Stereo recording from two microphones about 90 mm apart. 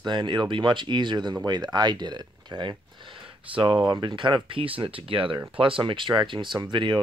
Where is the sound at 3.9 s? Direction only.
60° right (ahead or behind).